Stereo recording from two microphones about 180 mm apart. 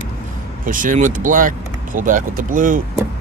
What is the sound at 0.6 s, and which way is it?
Speech, 45° right (ahead or behind).